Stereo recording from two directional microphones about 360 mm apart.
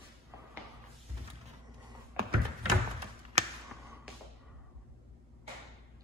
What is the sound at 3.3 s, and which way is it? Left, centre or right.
Basketball bounce, centre.